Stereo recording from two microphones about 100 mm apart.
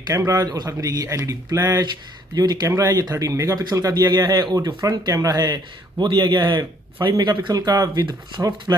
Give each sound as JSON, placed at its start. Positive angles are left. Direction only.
{"t": 0.3, "sound": "a man's voice", "side_deg": -40}